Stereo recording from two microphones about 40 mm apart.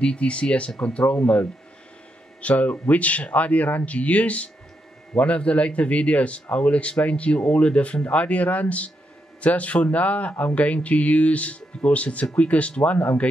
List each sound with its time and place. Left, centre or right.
0.0 s a man's voice: left
2.4 s a man's voice: left